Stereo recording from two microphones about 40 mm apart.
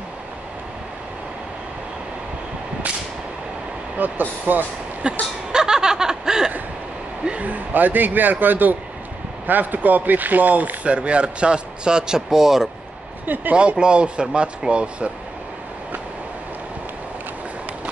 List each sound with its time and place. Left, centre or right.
4.0 s speech: right
5.0 s speech: right
5.5 s snicker: centre
7.4 s a man's voice: right; by 12.6 s centre
13.5 s speech: right